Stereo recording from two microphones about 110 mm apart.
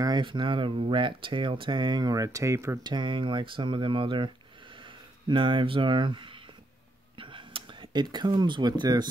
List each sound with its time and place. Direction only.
0.0 s speech: 45° right (ahead or behind); by 2.8 s 25° right (ahead or behind)
2.8 s speech: 45° right (ahead or behind)
5.3 s speech: 50° right (ahead or behind)
7.2 s a sound: 50° right (ahead or behind)